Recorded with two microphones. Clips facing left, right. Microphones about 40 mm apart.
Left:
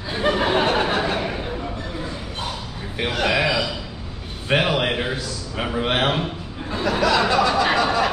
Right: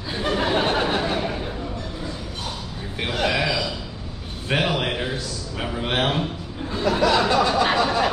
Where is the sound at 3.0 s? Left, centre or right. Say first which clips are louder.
Left 2 dB; centre.